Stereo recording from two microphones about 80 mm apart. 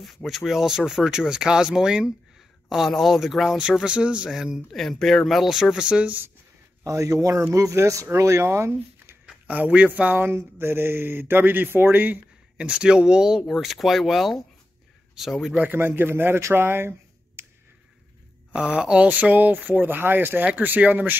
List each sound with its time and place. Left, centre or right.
0.0 s speech: centre
6.8 s speech: right
9.2 s speech: centre
10.2 s speech: right; by 15.3 s centre
15.5 s speech: right
17.4 s a sound: right
18.5 s speech: centre